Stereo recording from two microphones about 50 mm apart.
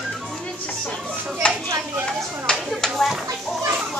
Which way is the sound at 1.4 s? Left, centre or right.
Left.